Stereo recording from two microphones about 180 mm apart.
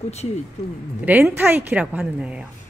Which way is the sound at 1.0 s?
10° right (ahead or behind).